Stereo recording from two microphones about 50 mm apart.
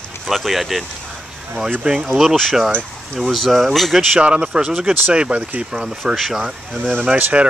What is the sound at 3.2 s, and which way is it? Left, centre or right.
Speech, centre.